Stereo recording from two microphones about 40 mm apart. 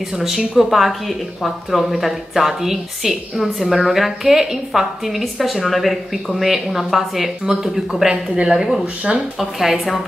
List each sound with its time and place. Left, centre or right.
0.1 s a woman's voice: centre
9.4 s speech: centre